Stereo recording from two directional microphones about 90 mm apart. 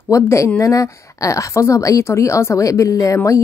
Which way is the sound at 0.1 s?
35° left (ahead or behind).